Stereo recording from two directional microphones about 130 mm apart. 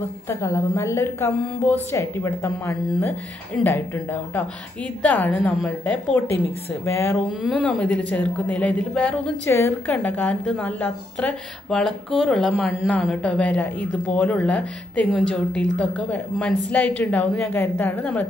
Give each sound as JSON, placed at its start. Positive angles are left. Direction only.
{"t": 0.3, "sound": "a woman's voice", "side_deg": 20}
{"t": 7.5, "sound": "a woman's voice", "side_deg": 10}
{"t": 9.5, "sound": "a woman's voice", "side_deg": 20}